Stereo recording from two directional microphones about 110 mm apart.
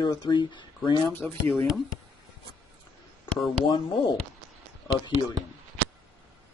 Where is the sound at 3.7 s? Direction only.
45° left (ahead or behind).